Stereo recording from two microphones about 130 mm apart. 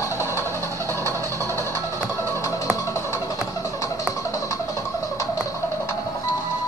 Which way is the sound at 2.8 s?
20° left (ahead or behind).